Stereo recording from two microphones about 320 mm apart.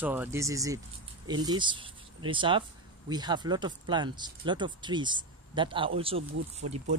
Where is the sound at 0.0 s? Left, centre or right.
Centre.